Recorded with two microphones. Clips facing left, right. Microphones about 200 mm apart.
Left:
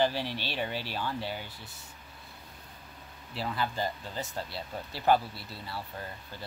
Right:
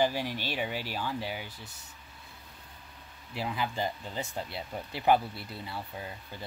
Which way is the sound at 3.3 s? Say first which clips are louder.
Even; 15° right (ahead or behind).